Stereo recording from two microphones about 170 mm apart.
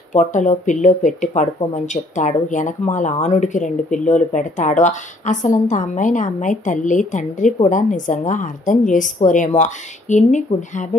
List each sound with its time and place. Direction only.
0.1 s speech: 45° left (ahead or behind)